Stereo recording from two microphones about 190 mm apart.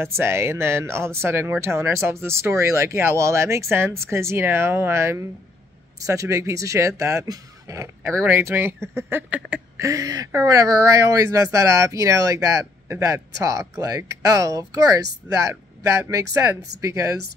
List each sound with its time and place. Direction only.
0.0 s speech: 15° right (ahead or behind)